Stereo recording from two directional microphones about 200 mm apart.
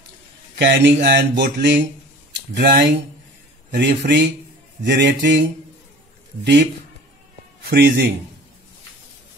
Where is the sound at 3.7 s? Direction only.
60° right (ahead or behind).